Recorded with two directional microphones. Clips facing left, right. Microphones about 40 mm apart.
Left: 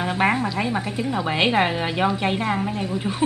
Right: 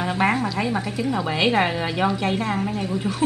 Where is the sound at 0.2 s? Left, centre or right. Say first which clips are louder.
Even; centre.